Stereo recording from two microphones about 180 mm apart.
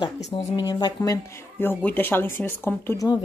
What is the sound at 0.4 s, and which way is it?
Speech, 25° left (ahead or behind).